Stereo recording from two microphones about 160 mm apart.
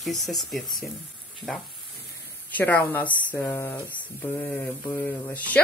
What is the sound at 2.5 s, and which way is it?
Speech, 10° left (ahead or behind).